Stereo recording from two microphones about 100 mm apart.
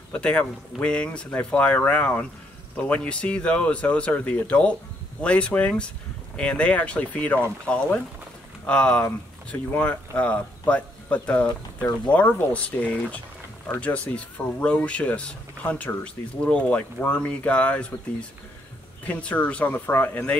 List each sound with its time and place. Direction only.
0.1 s speech: 10° left (ahead or behind)
19.0 s speech: 15° left (ahead or behind)